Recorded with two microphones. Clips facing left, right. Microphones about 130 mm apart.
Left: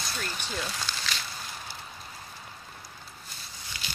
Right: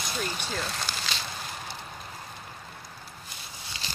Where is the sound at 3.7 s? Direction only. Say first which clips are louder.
Right 1 dB; 25° right (ahead or behind).